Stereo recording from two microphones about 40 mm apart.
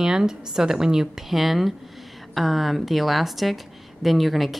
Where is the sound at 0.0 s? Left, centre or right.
Centre.